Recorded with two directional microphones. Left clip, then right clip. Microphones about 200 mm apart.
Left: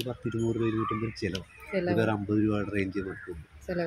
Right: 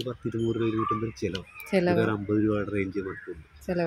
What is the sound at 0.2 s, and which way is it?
Speech, centre (ahead or behind).